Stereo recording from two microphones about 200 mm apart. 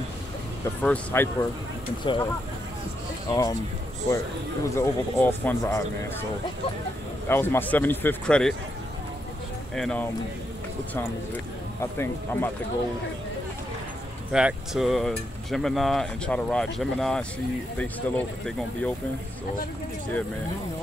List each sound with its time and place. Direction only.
0.8 s speech: 10° left (ahead or behind)
2.1 s speech: 25° left (ahead or behind)
3.3 s speech: 20° left (ahead or behind)
4.6 s speech: 10° left (ahead or behind)
7.2 s speech: 10° left (ahead or behind)
9.8 s speech: 5° left (ahead or behind)
11.8 s speech: 10° left (ahead or behind)
14.3 s speech: 5° right (ahead or behind)